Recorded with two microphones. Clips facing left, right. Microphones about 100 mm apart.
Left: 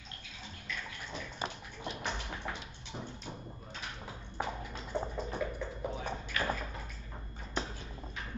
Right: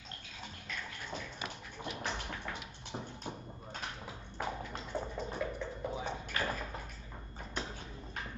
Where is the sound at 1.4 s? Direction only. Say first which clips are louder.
Left 8 dB; 30° left (ahead or behind).